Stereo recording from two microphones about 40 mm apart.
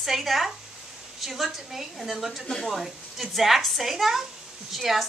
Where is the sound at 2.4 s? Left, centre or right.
Centre.